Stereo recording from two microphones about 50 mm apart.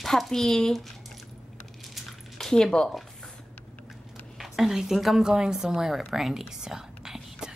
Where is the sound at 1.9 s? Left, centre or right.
Centre.